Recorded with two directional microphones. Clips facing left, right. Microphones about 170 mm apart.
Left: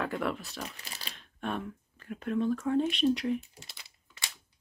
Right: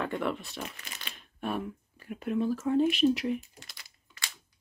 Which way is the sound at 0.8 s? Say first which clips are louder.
Even; 35° left (ahead or behind).